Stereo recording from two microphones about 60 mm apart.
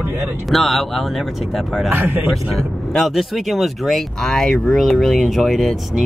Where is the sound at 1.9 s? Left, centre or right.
Right.